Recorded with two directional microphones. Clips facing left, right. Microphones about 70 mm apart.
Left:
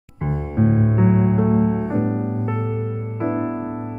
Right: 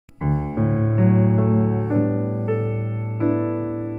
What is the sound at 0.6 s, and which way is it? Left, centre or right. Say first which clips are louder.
Music: left 6 dB; centre.